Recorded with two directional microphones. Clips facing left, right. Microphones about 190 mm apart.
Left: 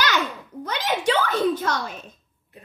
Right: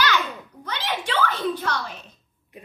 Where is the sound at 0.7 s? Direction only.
45° left (ahead or behind).